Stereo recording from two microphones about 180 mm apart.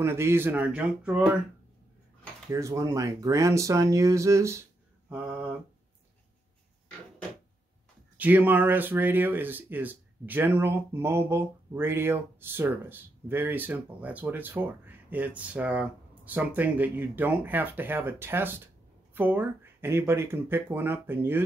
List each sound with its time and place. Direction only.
0.0 s speech: 15° right (ahead or behind)
2.5 s speech: 15° right (ahead or behind)
5.1 s a sound: 10° right (ahead or behind)
8.2 s speech: 10° right (ahead or behind)